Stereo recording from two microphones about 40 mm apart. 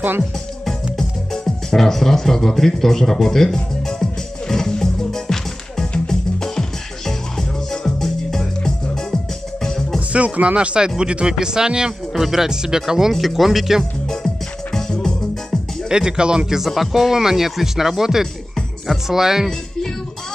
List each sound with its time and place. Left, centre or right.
0.9 s speech: centre
3.5 s music: centre
9.9 s music: right
11.0 s speech: right
12.1 s speech: centre
13.1 s speech: centre
14.0 s music: centre
15.9 s speech: right
16.5 s speech: centre
18.5 s music: centre